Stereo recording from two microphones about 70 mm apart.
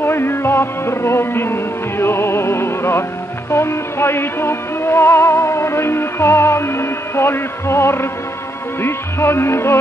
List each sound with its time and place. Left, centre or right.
0.0 s music: left